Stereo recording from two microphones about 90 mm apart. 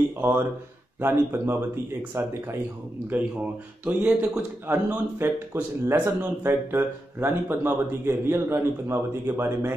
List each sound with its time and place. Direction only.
0.2 s speech: 25° right (ahead or behind)
3.8 s speech: 15° right (ahead or behind)